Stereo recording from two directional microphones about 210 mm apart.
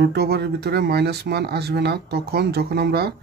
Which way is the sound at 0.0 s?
50° right (ahead or behind).